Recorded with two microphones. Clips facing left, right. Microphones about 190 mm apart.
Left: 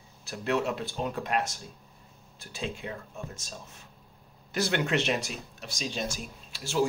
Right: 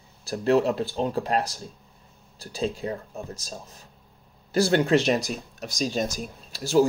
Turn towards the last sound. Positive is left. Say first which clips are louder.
# right 9 dB
turn(degrees=-40)  # may be behind; listen again after turning